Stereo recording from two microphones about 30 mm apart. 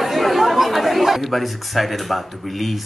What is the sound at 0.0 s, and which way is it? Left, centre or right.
Speech, centre.